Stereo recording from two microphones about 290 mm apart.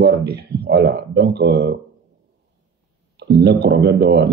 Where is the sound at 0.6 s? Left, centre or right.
Right.